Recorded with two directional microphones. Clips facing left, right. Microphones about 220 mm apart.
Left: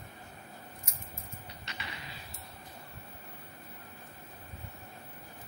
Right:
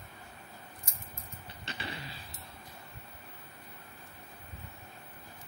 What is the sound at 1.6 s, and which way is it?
Mechanisms, 30° right (ahead or behind).